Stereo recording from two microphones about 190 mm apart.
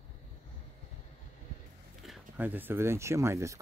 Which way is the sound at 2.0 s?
5° right (ahead or behind).